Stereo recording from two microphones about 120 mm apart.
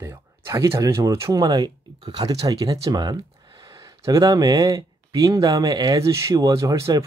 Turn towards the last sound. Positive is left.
turn(degrees=-30)  # may be behind; listen again after turning